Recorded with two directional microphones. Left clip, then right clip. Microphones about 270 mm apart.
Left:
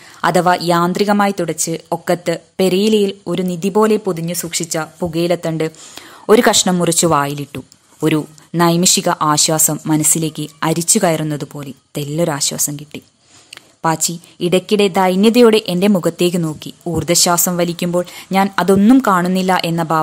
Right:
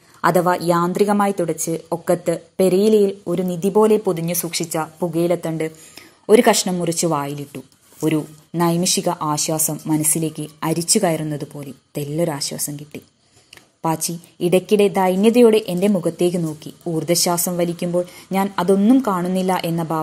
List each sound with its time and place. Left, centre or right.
0.5 s a woman's voice: left